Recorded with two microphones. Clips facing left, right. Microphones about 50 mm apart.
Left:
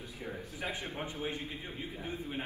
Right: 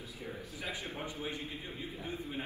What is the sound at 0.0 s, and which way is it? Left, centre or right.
A man's voice, left.